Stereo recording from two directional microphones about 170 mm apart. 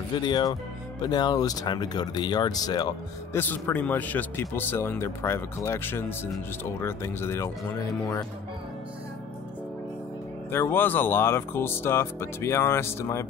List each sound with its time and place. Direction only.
0.1 s speech: 25° left (ahead or behind)
3.3 s speech: 10° left (ahead or behind)
10.5 s speech: 15° left (ahead or behind)